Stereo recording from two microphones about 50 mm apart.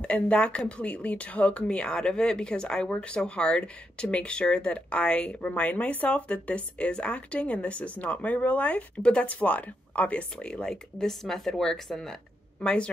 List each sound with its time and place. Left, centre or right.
0.0 s a woman's voice: left
10.7 s speech: centre
12.5 s speech: left